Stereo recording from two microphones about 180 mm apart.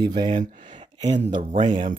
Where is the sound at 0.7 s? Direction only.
25° right (ahead or behind).